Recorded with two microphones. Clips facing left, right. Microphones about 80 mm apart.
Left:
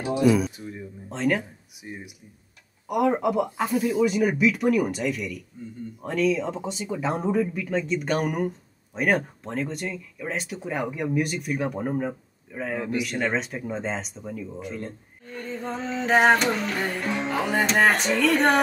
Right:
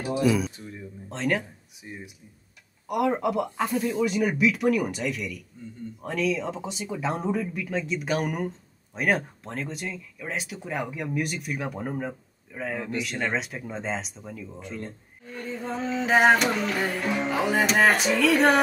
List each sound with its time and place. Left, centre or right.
0.2 s speech: centre
0.6 s a sound: centre
1.1 s speech: centre
1.8 s speech: centre
2.9 s speech: centre